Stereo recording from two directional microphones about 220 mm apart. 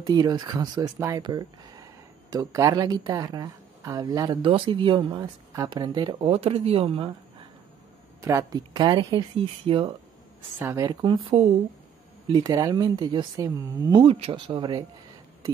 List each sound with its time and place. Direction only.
0.0 s speech: 20° right (ahead or behind)
8.2 s speech: 15° right (ahead or behind)